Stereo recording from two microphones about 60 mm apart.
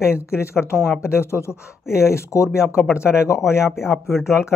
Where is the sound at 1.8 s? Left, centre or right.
Centre.